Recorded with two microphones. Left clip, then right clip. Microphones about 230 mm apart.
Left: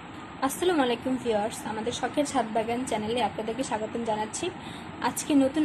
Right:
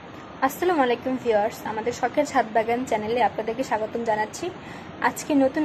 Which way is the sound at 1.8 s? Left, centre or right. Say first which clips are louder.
Right 5 dB; centre.